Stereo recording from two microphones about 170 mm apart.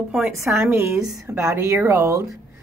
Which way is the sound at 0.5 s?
15° right (ahead or behind).